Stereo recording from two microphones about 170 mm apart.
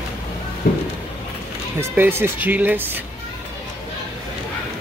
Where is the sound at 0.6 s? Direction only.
60° left (ahead or behind).